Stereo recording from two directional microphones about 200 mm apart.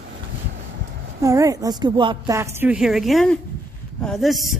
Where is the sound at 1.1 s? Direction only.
15° right (ahead or behind).